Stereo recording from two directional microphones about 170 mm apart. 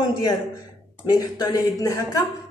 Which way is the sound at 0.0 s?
25° left (ahead or behind).